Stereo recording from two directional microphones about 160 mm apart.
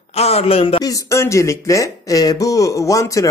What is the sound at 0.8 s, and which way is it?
Speech, 20° left (ahead or behind).